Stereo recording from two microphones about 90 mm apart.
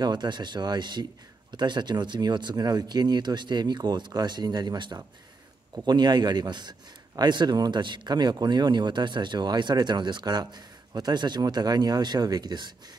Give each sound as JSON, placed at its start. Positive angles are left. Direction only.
{"t": 0.0, "sound": "speech", "side_deg": -55}